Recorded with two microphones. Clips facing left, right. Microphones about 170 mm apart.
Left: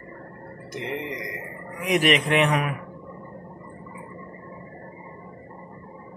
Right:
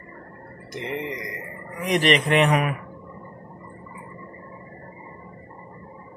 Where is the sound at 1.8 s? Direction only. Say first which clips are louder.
Right 1 dB; 5° left (ahead or behind).